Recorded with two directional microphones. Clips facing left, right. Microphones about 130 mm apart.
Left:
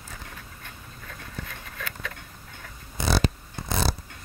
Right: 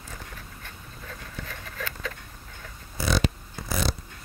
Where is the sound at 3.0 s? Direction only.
20° left (ahead or behind).